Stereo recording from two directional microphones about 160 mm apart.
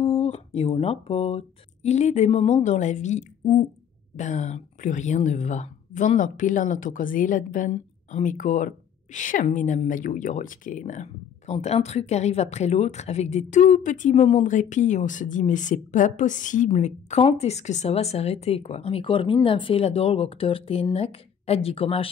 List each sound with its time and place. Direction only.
0.0 s speech: 40° left (ahead or behind)